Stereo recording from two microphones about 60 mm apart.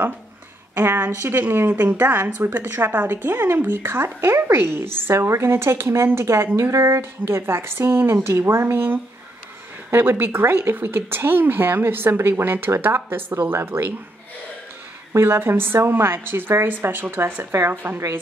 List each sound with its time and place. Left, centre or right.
0.7 s a woman's voice: right
9.8 s a woman's voice: right
15.1 s a woman's voice: right